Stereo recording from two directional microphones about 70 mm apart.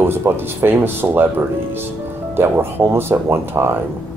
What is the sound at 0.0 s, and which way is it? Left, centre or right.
Speech, right.